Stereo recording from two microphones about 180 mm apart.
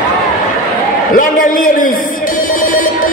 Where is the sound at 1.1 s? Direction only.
50° left (ahead or behind).